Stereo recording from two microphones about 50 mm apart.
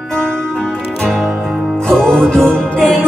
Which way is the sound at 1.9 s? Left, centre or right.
Centre.